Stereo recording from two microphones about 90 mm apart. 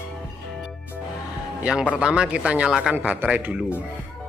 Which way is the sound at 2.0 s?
10° right (ahead or behind).